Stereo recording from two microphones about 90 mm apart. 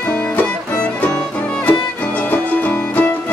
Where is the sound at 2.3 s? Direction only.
20° left (ahead or behind).